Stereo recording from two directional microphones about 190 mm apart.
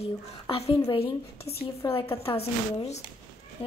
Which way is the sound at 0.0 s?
30° left (ahead or behind).